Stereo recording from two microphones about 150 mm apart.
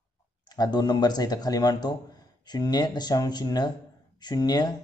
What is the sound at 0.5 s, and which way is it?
Speech, 25° left (ahead or behind).